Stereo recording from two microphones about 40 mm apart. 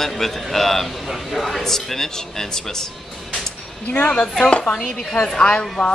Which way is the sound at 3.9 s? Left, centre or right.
Left.